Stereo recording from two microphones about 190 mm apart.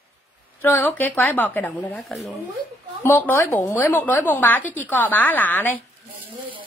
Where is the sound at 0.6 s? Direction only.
10° left (ahead or behind).